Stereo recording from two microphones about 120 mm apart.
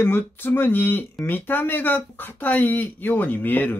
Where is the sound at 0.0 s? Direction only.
15° left (ahead or behind).